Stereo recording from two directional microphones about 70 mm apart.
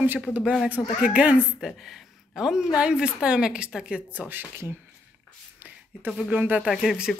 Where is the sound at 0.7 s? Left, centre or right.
Centre.